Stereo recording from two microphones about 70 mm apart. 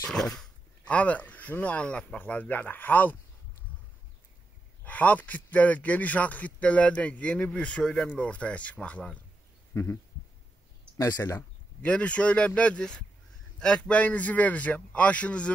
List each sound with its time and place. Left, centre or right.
0.1 s speech: centre
0.8 s speech: centre
4.8 s speech: left
9.7 s a sound: left
11.0 s speech: left
11.8 s speech: centre